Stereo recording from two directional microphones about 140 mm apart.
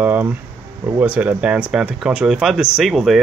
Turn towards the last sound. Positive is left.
turn(degrees=0)  # may be behind; listen again after turning